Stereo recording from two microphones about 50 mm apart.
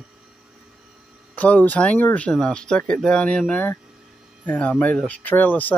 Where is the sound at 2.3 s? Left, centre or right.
Centre.